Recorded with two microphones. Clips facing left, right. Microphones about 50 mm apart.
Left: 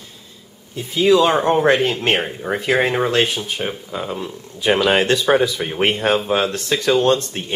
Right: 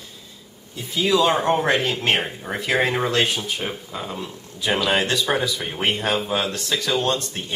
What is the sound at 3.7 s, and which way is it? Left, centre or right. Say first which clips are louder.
Speech: left 4 dB; centre.